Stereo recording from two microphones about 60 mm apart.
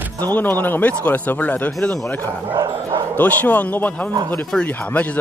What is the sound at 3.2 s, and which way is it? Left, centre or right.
Speech, left.